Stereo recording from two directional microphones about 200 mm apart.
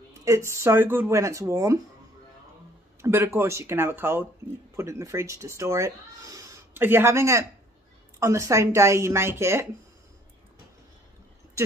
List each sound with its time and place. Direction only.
0.2 s speech: 15° right (ahead or behind)
3.0 s speech: 15° right (ahead or behind)